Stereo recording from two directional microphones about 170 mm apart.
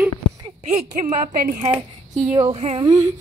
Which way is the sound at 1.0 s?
50° right (ahead or behind).